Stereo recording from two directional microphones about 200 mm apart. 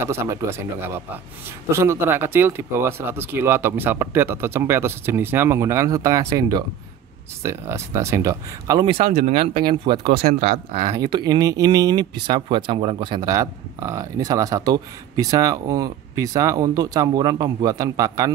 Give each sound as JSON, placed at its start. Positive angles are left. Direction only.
{"t": 0.0, "sound": "speech", "side_deg": -15}
{"t": 10.1, "sound": "speech", "side_deg": -50}
{"t": 10.7, "sound": "speech", "side_deg": -20}